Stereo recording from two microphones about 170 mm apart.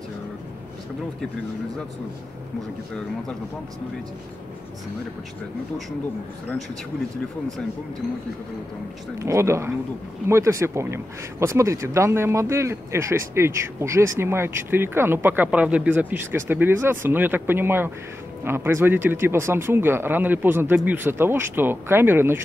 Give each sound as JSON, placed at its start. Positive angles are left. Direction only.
{"t": 9.2, "sound": "speech", "side_deg": -15}